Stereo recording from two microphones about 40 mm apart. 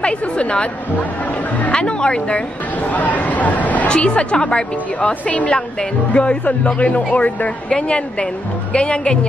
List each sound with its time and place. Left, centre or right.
0.0 s a woman's voice: left
2.9 s speech: left
3.8 s a woman's voice: left